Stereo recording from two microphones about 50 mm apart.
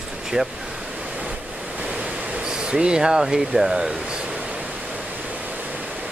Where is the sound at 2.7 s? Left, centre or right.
Centre.